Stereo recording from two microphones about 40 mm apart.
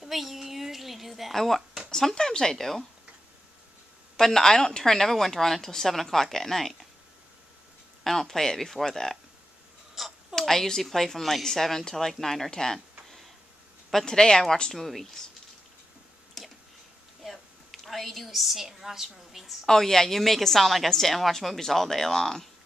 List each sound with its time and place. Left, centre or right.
0.0 s a sound: centre
1.3 s speech: centre
1.9 s a woman's voice: centre
4.2 s a woman's voice: centre
8.0 s a woman's voice: centre
10.0 s a sound: centre
10.4 s a woman's voice: centre
16.4 s a sound: centre
17.2 s a woman's voice: centre
19.6 s a woman's voice: centre